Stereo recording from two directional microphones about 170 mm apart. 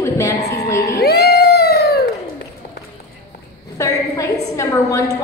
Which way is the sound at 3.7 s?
20° left (ahead or behind).